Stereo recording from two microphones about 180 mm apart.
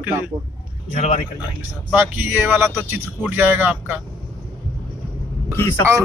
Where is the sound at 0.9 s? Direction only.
40° left (ahead or behind).